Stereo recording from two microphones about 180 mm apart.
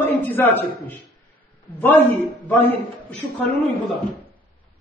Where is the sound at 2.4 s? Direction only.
10° left (ahead or behind).